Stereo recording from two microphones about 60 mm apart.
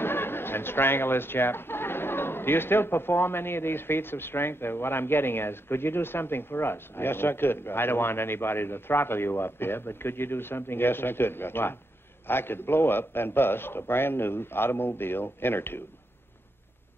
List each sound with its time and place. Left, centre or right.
0.0 s speech: left